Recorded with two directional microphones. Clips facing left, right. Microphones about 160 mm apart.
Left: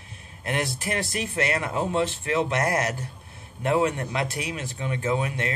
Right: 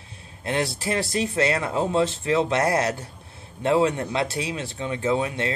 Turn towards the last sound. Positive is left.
turn(degrees=-30)  # may be behind; listen again after turning